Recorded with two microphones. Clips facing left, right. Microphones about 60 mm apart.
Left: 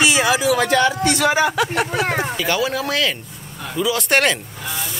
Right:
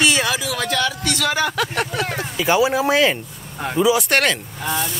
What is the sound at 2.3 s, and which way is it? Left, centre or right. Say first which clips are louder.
Speech: right 3 dB; centre.